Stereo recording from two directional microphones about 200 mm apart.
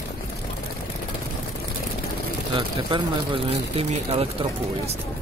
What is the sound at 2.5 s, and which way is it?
Speech, 25° right (ahead or behind).